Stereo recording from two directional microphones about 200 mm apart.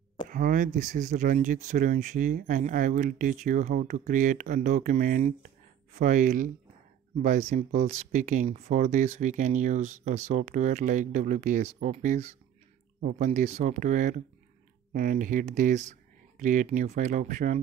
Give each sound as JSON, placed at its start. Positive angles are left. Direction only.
{"t": 0.3, "sound": "speech", "side_deg": -45}